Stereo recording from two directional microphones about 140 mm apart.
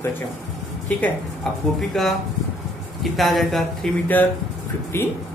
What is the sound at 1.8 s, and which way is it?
Speech, centre (ahead or behind).